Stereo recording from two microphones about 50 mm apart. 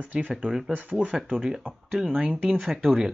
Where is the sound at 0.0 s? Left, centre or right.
Right.